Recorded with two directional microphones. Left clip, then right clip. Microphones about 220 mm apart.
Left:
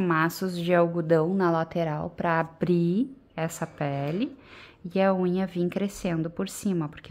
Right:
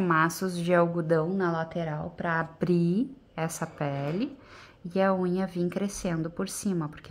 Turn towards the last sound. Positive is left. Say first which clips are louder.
# left 2 dB
turn(degrees=15)  # may be behind; listen again after turning